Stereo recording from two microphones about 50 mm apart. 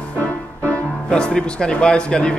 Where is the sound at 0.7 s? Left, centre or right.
Left.